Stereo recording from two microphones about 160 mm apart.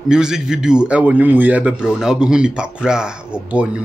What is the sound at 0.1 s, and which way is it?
A man's voice, 5° right (ahead or behind).